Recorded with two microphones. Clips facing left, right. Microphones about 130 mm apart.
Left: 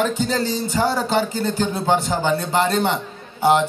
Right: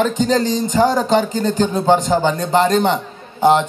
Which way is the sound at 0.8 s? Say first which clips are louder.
Right 5 dB; 15° right (ahead or behind).